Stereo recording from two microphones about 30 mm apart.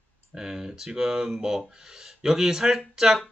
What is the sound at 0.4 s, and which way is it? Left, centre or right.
Speech, right.